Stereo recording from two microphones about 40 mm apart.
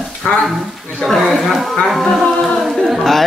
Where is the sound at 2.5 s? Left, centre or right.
Centre.